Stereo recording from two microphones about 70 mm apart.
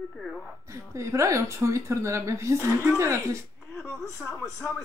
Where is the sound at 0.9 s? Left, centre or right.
Right.